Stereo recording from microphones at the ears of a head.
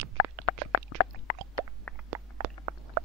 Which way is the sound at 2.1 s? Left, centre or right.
Right.